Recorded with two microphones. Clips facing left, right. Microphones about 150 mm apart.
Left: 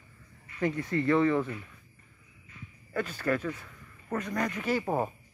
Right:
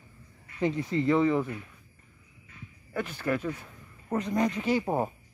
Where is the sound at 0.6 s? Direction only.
20° right (ahead or behind).